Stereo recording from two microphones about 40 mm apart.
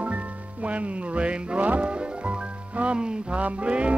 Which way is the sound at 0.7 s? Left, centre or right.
Right.